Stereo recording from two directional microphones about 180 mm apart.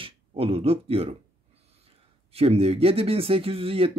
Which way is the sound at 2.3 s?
35° right (ahead or behind).